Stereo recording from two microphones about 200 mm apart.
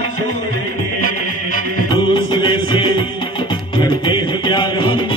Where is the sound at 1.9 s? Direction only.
25° left (ahead or behind).